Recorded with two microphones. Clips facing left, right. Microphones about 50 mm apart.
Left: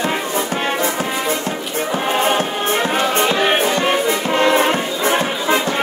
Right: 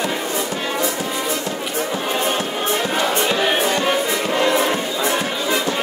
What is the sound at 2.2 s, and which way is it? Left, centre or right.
Music, left.